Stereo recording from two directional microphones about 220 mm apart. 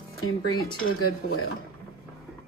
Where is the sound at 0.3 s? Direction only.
75° left (ahead or behind).